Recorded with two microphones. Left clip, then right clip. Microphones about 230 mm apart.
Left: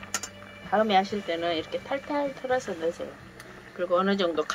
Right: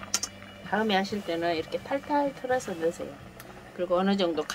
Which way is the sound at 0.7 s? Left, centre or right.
Right.